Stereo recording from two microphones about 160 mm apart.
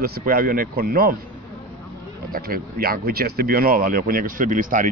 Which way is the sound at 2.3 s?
65° right (ahead or behind).